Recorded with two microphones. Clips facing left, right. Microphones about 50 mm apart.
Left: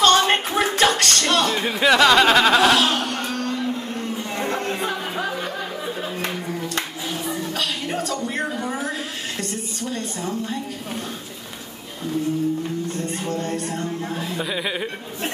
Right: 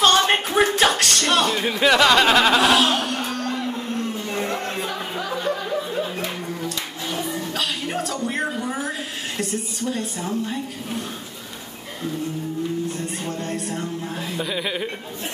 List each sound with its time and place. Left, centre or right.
0.0 s music: centre
0.7 s chuckle: centre
4.8 s a sound: left
7.1 s a sound: centre
9.4 s a woman's voice: centre
13.4 s speech: centre